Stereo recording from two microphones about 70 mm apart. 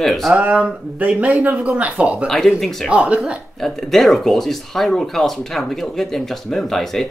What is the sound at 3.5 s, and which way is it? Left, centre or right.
Speech, centre.